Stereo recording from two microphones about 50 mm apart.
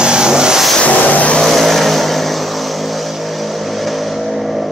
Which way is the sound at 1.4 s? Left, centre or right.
Centre.